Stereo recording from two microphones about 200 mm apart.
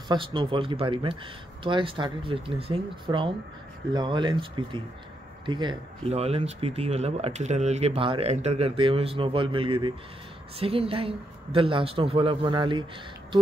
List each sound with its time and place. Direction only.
0.1 s speech: 25° right (ahead or behind)